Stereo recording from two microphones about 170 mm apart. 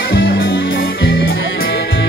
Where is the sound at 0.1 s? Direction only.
85° left; by 1.7 s 65° left (ahead or behind).